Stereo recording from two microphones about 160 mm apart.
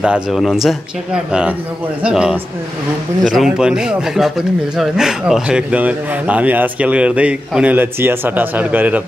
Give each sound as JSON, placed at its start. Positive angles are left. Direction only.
{"t": 0.0, "sound": "speech", "side_deg": -5}